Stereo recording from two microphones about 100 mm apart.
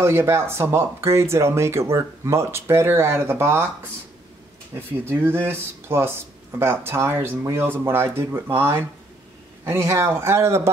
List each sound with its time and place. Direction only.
0.0 s speech: 25° right (ahead or behind)
4.7 s speech: 20° right (ahead or behind)